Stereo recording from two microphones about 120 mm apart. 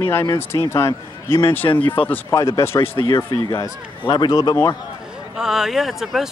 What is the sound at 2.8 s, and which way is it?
Speech, 45° left (ahead or behind).